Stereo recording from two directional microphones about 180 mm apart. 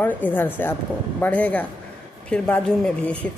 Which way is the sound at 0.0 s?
10° left (ahead or behind).